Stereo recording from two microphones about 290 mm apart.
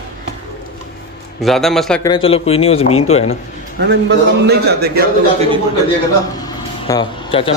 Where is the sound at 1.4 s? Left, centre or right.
Centre.